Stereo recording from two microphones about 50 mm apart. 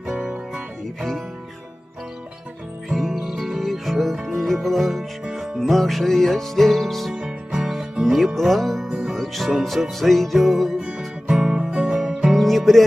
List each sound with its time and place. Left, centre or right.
3.0 s music: centre
7.2 s music: centre
8.0 s music: centre
11.2 s music: centre
12.1 s music: centre